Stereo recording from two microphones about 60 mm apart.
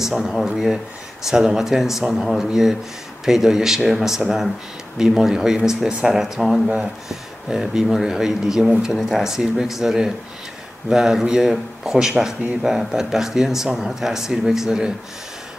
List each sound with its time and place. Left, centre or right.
0.0 s speech: centre